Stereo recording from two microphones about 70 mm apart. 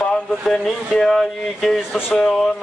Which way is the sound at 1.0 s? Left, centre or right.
Centre.